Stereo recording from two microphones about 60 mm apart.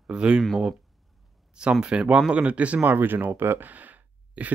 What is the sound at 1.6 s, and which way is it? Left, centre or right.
Speech, centre.